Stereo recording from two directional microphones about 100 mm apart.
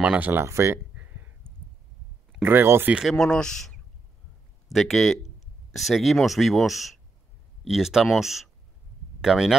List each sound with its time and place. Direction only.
0.0 s speech: 15° right (ahead or behind)
0.9 s a sound: 20° right (ahead or behind)
2.4 s speech: 20° right (ahead or behind)
2.9 s speech: 5° right (ahead or behind)
3.2 s speech: 5° left (ahead or behind)
4.7 s speech: 5° left (ahead or behind)